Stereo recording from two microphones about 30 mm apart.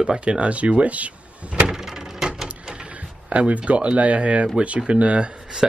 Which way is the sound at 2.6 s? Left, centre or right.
Right.